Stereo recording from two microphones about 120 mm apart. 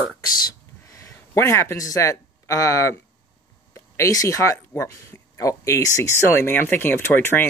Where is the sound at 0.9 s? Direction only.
25° left (ahead or behind).